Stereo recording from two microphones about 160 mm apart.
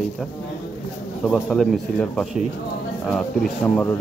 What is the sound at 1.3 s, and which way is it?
Speech, 5° left (ahead or behind).